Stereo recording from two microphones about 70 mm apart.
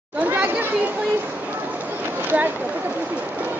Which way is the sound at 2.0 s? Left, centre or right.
Right.